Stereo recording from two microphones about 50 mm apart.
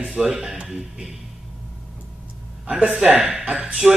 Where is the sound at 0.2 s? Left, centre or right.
Centre.